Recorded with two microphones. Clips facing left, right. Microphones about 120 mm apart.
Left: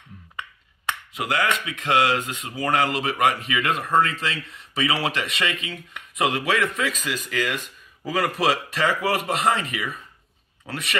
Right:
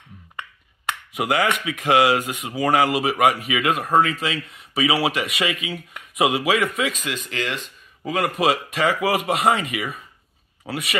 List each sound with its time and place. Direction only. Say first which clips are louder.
1.1 s speech: right 3 dB; 15° right (ahead or behind)